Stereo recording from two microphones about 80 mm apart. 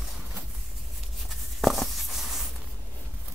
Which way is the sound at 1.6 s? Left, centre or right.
Centre.